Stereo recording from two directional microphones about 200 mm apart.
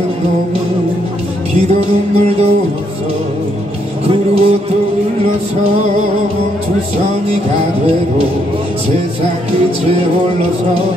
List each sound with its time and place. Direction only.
1.7 s music: 30° right (ahead or behind)
4.1 s music: 30° right (ahead or behind)